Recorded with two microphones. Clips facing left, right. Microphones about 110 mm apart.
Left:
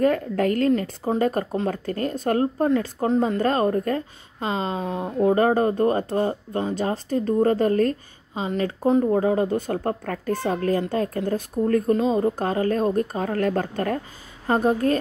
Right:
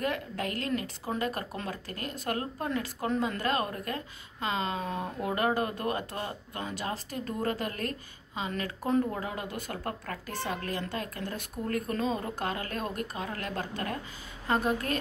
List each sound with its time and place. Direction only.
0.0 s speech: 40° left (ahead or behind)
13.2 s a woman's voice: 45° left (ahead or behind)
14.5 s speech: 30° left (ahead or behind)